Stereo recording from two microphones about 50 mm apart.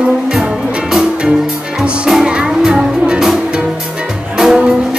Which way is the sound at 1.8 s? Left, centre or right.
Centre.